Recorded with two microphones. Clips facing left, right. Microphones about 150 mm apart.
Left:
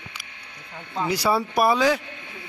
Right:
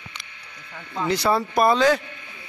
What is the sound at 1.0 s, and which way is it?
A man's voice, 10° left (ahead or behind).